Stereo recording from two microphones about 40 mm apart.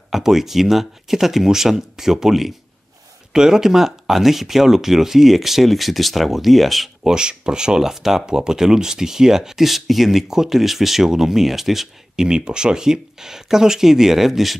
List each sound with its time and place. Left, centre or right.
0.1 s speech: centre
7.0 s speech: right
12.3 s speech: right; by 14.6 s centre